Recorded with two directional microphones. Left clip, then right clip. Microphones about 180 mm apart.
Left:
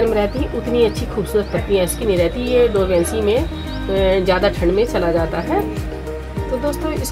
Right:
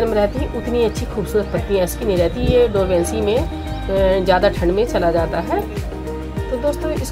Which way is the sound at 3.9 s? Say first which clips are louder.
Right 1 dB; 35° left (ahead or behind).